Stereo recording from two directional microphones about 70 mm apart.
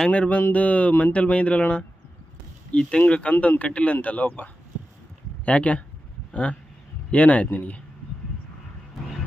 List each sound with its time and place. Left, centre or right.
0.1 s speech: centre
7.1 s speech: centre